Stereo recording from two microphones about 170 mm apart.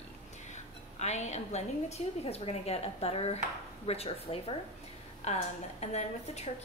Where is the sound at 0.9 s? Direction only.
40° left (ahead or behind).